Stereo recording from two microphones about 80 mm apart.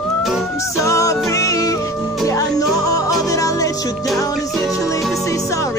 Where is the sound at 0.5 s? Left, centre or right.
Left.